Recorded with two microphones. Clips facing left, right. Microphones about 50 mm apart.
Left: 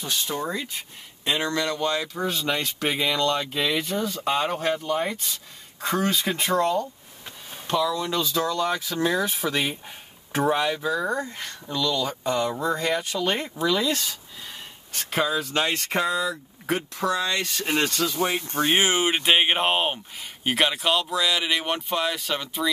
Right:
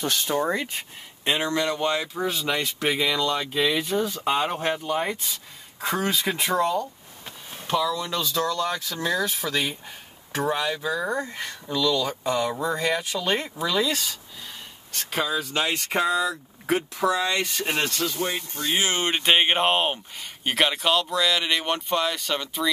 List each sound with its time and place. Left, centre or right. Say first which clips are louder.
0.0 s speech: right 3 dB; right
0.3 s speech: right 4 dB; right
1.2 s speech: right 1 dB; centre
2.1 s speech: even; centre
10.3 s speech: left 3 dB; left; by 17.8 s centre
17.9 s speech: left 2 dB; left
18.2 s speech: left 3 dB; left
18.6 s speech: left 4 dB; left
18.9 s speech: left 1 dB; centre